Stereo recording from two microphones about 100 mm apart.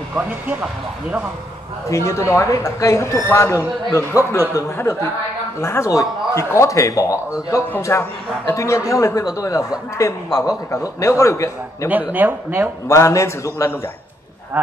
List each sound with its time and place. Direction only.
0.1 s speech: 15° right (ahead or behind)
1.9 s a man's voice: 30° left (ahead or behind)
11.9 s speech: 15° right (ahead or behind)
12.8 s speech: 30° left (ahead or behind)